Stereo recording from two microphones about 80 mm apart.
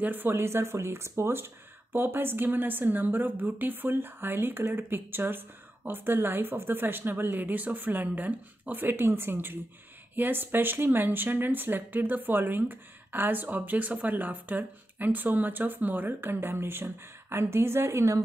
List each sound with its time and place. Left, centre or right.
0.0 s a woman's voice: right